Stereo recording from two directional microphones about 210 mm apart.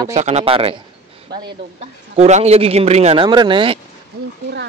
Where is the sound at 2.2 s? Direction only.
30° right (ahead or behind).